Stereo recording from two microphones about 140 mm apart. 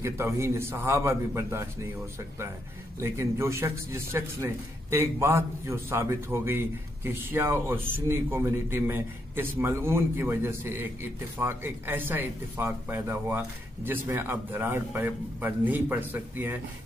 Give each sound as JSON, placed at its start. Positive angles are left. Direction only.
{"t": 0.0, "sound": "a man's voice", "side_deg": -20}
{"t": 3.0, "sound": "a man's voice", "side_deg": -20}